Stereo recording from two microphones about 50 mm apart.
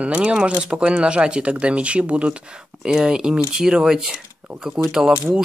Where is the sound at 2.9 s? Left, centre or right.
Centre.